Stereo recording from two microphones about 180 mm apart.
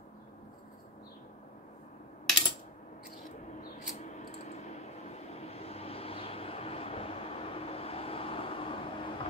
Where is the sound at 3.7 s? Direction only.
40° left (ahead or behind).